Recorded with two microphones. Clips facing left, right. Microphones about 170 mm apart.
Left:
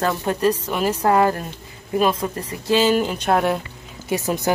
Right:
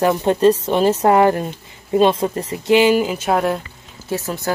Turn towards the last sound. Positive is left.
turn(degrees=15)  # may be behind; listen again after turning